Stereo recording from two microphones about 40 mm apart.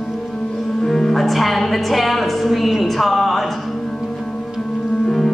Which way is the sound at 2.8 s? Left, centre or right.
Centre.